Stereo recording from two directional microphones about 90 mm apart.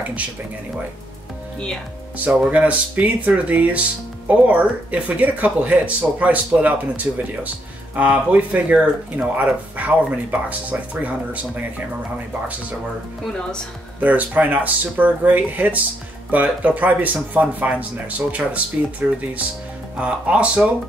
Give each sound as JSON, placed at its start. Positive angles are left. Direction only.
{"t": 2.1, "sound": "speech", "side_deg": -15}
{"t": 13.2, "sound": "speech", "side_deg": 10}
{"t": 13.9, "sound": "speech", "side_deg": -20}